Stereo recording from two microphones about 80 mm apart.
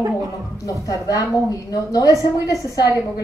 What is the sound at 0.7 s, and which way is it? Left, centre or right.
A woman's voice, left.